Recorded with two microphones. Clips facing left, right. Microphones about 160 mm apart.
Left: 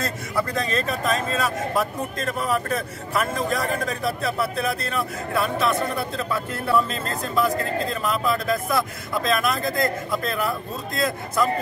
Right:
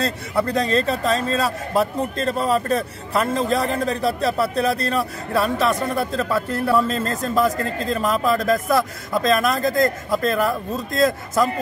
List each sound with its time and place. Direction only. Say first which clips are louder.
0.0 s a man's voice: right 4 dB; 30° right (ahead or behind)